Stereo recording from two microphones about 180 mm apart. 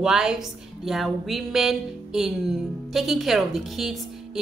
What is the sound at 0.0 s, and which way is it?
A woman's voice, 5° right (ahead or behind).